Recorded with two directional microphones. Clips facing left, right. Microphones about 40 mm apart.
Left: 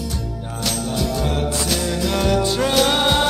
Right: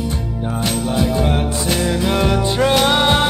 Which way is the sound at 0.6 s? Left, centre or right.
Right.